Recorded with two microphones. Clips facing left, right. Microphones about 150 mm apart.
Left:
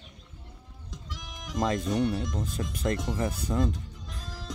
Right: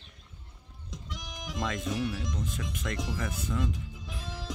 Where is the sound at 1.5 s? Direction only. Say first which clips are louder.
Left 6 dB; 35° left (ahead or behind).